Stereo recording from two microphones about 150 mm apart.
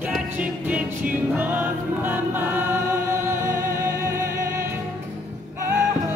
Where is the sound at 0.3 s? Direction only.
10° right (ahead or behind).